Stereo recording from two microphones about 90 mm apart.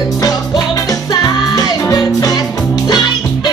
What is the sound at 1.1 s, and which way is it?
Music, 50° left (ahead or behind).